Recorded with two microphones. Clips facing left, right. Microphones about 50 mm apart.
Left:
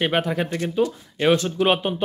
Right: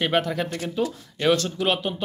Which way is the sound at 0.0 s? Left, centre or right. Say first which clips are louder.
Left 1 dB; centre.